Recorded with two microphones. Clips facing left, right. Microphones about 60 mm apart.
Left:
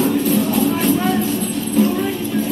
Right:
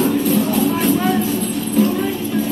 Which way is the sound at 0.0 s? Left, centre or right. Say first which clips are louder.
Even; centre.